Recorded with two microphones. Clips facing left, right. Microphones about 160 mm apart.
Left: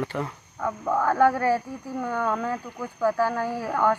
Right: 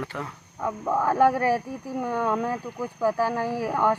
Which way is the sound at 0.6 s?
10° right (ahead or behind).